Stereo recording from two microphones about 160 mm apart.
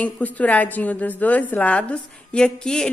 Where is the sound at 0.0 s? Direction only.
10° left (ahead or behind).